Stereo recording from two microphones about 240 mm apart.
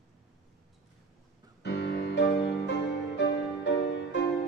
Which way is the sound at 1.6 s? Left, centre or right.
Left.